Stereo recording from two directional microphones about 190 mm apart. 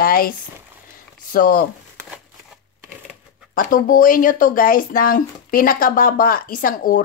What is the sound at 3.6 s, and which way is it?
Speech, 45° left (ahead or behind).